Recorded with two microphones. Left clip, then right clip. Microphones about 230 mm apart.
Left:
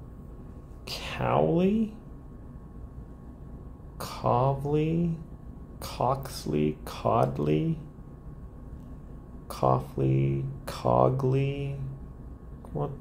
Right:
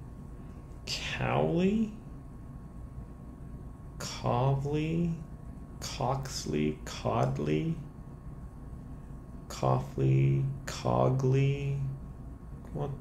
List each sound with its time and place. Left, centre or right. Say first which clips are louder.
0.8 s speech: left 3 dB; centre
4.0 s speech: left 5 dB; centre
9.5 s speech: left 5 dB; centre